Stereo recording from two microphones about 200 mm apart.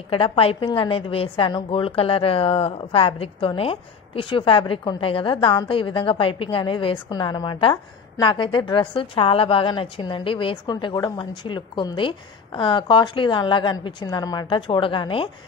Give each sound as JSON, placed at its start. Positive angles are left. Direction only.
{"t": 0.1, "sound": "a woman's voice", "side_deg": 25}